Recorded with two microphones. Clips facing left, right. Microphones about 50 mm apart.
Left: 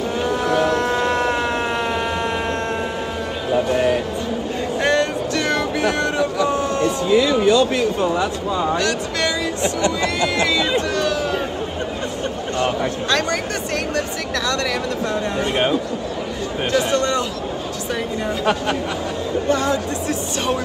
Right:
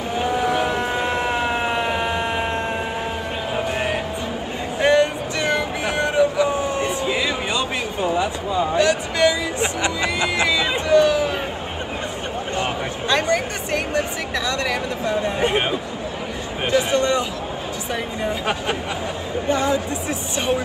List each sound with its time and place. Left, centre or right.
0.2 s cattle: centre
3.5 s a sound: right
12.5 s speech: centre
16.7 s speech: centre
18.2 s speech: centre